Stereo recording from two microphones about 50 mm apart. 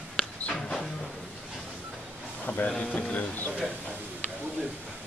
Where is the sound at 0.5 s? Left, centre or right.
Centre.